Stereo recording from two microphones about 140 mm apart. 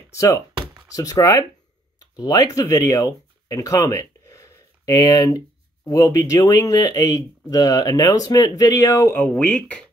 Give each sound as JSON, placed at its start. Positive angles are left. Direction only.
{"t": 0.1, "sound": "speech", "side_deg": 20}
{"t": 9.1, "sound": "speech", "side_deg": 10}